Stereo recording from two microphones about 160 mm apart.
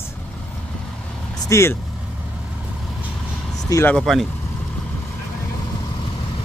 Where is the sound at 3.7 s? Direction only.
15° left (ahead or behind).